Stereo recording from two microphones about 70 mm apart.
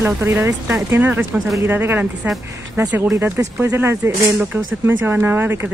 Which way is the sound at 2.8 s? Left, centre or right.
Right.